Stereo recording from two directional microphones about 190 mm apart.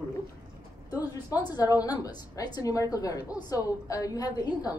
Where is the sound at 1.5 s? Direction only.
20° left (ahead or behind).